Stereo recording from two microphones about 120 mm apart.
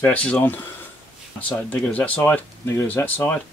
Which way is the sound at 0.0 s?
10° left (ahead or behind).